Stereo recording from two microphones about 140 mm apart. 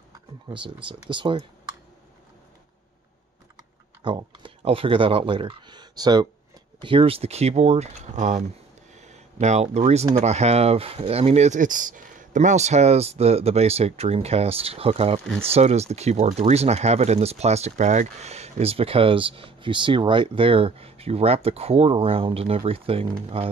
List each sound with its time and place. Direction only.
0.5 s speech: 35° right (ahead or behind)
4.0 s speech: 35° right (ahead or behind); by 8.5 s 55° right (ahead or behind)
8.9 s a sound: 55° right (ahead or behind)
10.1 s speech: 50° right (ahead or behind)